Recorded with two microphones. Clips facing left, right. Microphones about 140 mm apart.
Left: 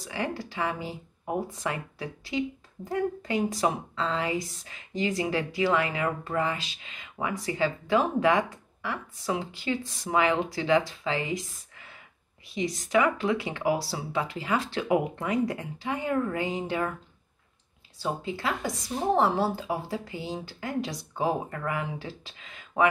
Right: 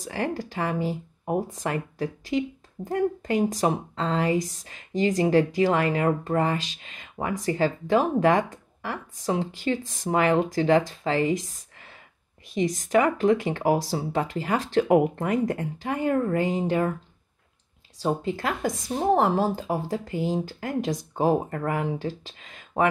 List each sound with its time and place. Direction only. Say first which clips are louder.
0.0 s speech: right 4 dB; 45° right (ahead or behind)
18.0 s speech: right 4 dB; 45° right (ahead or behind)